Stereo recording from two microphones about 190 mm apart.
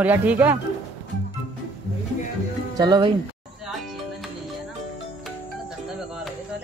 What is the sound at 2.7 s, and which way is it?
Speech, 20° right (ahead or behind).